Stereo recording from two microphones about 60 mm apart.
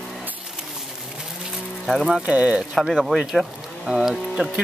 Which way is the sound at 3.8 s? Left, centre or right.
Centre.